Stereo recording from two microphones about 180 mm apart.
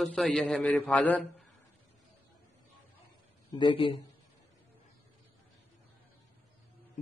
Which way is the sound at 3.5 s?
25° left (ahead or behind).